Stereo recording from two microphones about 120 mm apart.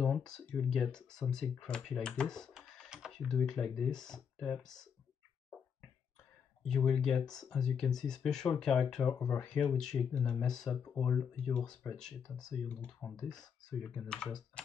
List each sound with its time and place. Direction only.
0.0 s speech: 5° left (ahead or behind)
6.6 s speech: 5° left (ahead or behind)
9.1 s speech: 25° left (ahead or behind)
9.4 s speech: 10° left (ahead or behind)
10.1 s speech: 15° left (ahead or behind)
12.6 s speech: 15° left (ahead or behind)
13.1 s speech: 5° left (ahead or behind)